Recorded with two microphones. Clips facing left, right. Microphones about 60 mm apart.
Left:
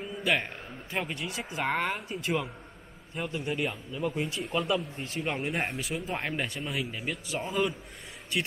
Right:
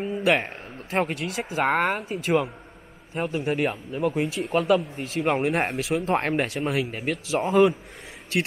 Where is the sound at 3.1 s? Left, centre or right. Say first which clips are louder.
Right 7 dB; right.